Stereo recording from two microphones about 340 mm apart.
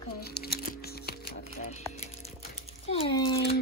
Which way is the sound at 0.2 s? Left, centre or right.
Left.